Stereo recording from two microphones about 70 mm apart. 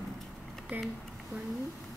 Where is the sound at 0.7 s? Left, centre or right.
Right.